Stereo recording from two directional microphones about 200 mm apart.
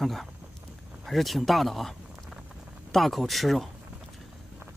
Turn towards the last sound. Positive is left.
turn(degrees=0)  # may be behind; listen again after turning